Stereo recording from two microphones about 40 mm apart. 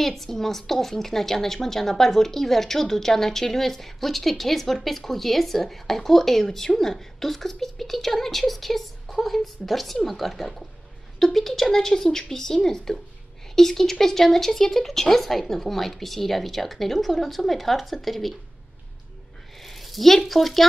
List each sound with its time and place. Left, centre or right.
0.0 s a woman's voice: centre
19.6 s speech: centre